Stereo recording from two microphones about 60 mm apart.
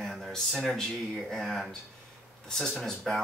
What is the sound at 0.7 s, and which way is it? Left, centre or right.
A man's voice, centre.